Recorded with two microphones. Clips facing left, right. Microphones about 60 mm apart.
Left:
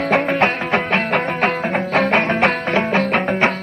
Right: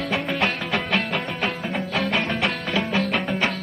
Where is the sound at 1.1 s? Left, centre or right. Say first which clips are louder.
Left 8 dB; left.